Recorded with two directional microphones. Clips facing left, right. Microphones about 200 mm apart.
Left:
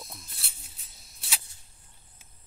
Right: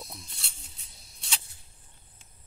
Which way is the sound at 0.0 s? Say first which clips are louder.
Right 2 dB; centre (ahead or behind).